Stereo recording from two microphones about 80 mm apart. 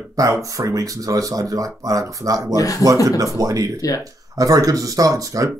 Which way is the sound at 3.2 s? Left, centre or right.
Right.